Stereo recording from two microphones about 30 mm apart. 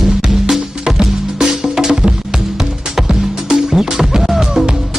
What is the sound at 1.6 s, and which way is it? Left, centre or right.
Music, centre.